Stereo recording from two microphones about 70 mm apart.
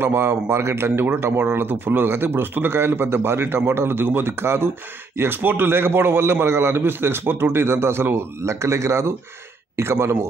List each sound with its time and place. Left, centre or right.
0.0 s speech: right